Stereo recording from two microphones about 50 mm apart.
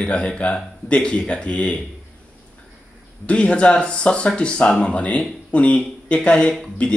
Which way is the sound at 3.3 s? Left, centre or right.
Left.